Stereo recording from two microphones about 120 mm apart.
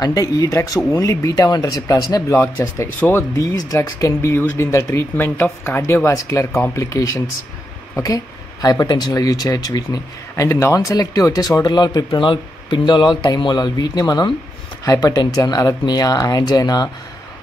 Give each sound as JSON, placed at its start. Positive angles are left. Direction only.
{"t": 0.0, "sound": "speech", "side_deg": 30}